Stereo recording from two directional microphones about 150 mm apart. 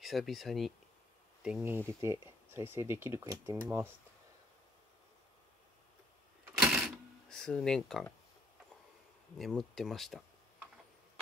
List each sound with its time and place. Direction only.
0.0 s speech: centre (ahead or behind)
6.6 s cash register: 5° right (ahead or behind)
7.2 s speech: 5° left (ahead or behind)
9.4 s speech: centre (ahead or behind)